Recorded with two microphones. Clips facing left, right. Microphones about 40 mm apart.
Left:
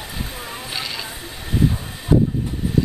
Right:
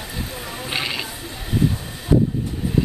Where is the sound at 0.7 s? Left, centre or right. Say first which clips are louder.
Right 4 dB; right.